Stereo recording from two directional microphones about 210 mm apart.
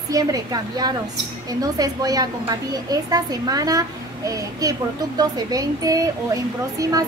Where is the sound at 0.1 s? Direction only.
15° right (ahead or behind).